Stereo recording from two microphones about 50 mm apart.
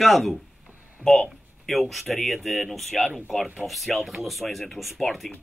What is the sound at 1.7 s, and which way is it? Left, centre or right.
Speech, centre.